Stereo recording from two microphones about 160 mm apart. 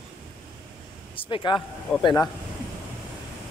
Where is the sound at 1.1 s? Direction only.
30° left (ahead or behind).